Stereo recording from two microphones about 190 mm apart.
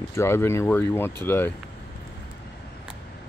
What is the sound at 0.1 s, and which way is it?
Speech, 15° left (ahead or behind).